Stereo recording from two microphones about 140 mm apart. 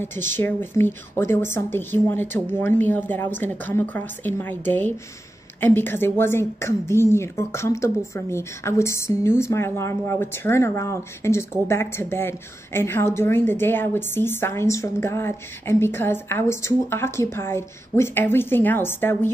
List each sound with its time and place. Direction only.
0.0 s a woman's voice: 15° left (ahead or behind)